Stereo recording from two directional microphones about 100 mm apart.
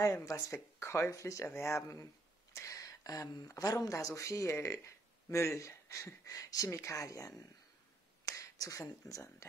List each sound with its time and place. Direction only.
0.0 s speech: 35° left (ahead or behind)
0.5 s speech: 25° left (ahead or behind)